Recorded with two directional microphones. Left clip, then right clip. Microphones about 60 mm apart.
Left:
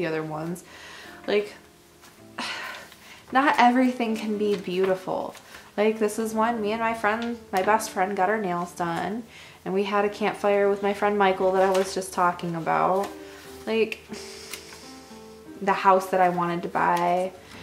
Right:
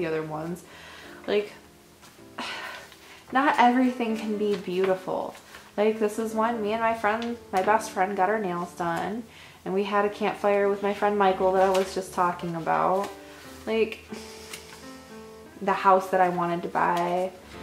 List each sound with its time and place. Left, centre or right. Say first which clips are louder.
0.0 s speech: left 1 dB; left
2.3 s music: left 2 dB; left
3.3 s speech: left 1 dB; left
11.3 s speech: even; left
11.9 s speech: left 2 dB; left
15.6 s speech: left 1 dB; left